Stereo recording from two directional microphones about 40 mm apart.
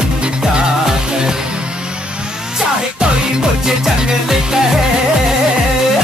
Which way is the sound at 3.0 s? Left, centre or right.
Centre.